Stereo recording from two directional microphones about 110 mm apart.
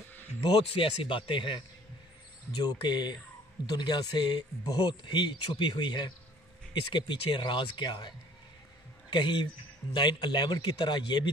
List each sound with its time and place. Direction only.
0.4 s speech: 55° left (ahead or behind)
9.1 s speech: 45° left (ahead or behind)